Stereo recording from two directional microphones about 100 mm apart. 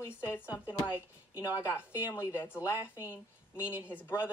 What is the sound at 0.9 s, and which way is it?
Speech, 20° right (ahead or behind).